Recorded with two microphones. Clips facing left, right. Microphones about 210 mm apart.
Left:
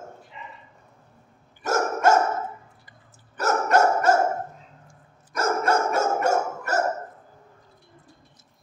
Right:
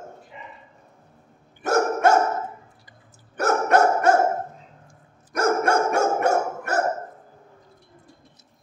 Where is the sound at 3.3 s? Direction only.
60° right (ahead or behind).